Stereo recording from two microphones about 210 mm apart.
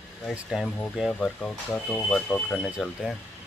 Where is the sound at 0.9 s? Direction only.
Centre (ahead or behind).